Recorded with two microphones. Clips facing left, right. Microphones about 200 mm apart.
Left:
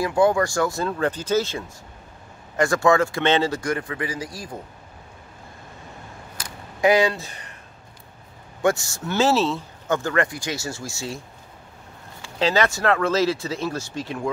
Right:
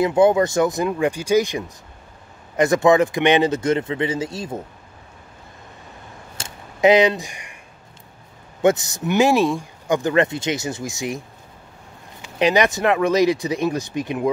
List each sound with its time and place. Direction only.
0.0 s speech: 20° right (ahead or behind)
6.3 s a sound: 25° right (ahead or behind)
8.6 s speech: 20° right (ahead or behind)